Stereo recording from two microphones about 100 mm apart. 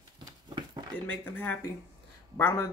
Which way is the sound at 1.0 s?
20° left (ahead or behind).